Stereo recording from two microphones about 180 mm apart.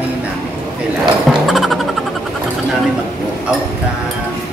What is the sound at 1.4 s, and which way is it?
Speech, centre (ahead or behind).